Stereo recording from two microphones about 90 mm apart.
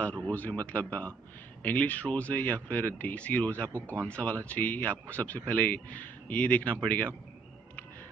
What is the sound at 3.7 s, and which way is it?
Speech, 25° right (ahead or behind).